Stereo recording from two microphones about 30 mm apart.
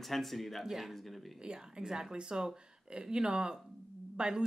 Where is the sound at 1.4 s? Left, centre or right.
Right.